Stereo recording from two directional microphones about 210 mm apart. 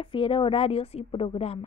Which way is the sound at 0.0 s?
25° left (ahead or behind).